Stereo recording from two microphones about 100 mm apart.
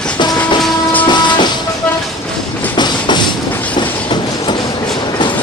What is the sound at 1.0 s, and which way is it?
Music, 50° left (ahead or behind).